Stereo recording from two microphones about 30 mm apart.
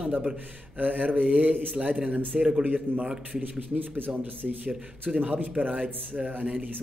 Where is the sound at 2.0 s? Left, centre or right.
Right.